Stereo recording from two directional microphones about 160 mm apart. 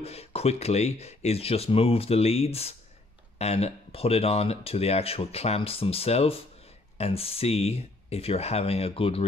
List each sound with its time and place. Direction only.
0.0 s speech: 40° left (ahead or behind)